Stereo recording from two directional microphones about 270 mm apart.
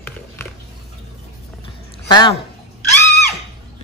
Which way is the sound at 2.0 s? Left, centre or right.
Centre.